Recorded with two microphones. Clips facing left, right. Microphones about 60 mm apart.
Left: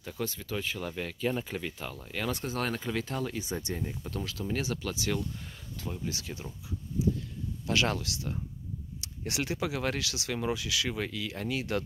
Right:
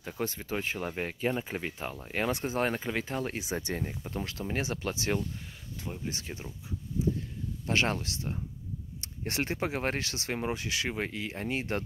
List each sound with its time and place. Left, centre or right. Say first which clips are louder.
0.0 s speech: right 1 dB; right
3.5 s speech: right 1 dB; right
3.8 s speech: even; right
7.2 s a sound: right 1 dB; right
9.0 s speech: right 1 dB; right